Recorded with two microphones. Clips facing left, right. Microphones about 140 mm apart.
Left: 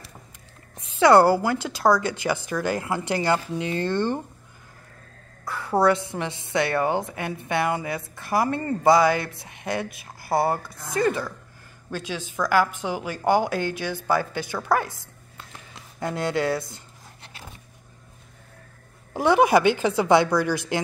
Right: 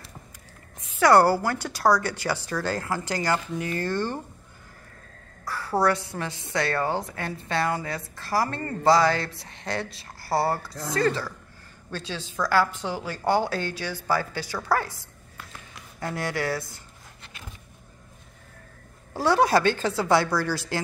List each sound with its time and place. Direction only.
0.7 s a woman's voice: 25° left (ahead or behind)
5.5 s a woman's voice: 20° left (ahead or behind)
19.1 s a woman's voice: 15° left (ahead or behind)